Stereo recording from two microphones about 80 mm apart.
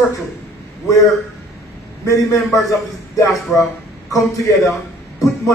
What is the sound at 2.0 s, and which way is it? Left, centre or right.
Speech, left.